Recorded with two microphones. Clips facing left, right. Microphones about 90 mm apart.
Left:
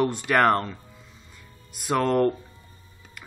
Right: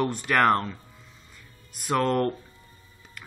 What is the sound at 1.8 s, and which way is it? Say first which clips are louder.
Speech: left 2 dB; 15° left (ahead or behind).